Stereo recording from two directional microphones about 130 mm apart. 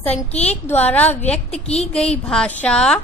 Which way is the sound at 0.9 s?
15° left (ahead or behind).